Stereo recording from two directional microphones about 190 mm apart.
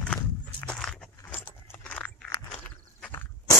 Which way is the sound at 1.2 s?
10° left (ahead or behind).